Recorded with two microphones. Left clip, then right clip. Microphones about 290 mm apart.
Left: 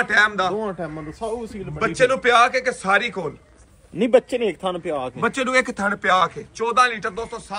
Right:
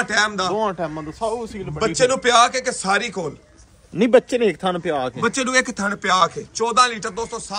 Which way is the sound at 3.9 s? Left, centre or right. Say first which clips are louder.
Right 2 dB; right.